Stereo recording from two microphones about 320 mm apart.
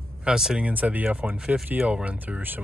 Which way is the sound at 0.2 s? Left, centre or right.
Centre.